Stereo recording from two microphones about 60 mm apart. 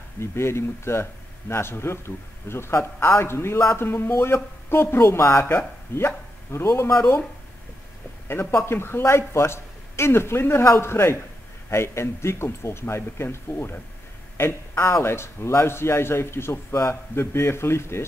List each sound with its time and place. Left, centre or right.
0.2 s a man's voice: left
8.3 s a man's voice: left